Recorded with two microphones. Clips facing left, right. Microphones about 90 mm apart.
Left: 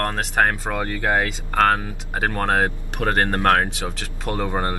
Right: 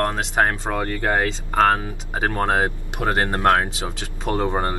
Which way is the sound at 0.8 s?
10° left (ahead or behind).